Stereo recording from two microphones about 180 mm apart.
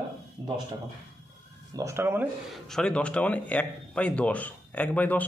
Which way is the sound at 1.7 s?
15° right (ahead or behind).